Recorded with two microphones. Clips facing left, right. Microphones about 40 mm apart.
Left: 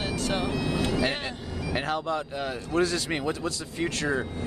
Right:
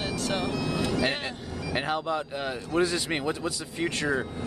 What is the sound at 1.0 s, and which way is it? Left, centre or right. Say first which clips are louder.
Speech: even; centre.